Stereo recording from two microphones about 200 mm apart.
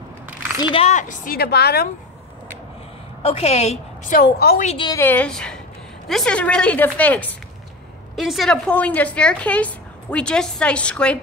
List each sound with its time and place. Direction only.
0.6 s a woman's voice: 25° left (ahead or behind); by 1.9 s 55° left (ahead or behind)
3.2 s a woman's voice: 30° left (ahead or behind)
4.2 s a woman's voice: 50° left (ahead or behind)
4.6 s a woman's voice: 25° left (ahead or behind)
4.9 s a woman's voice: 10° left (ahead or behind)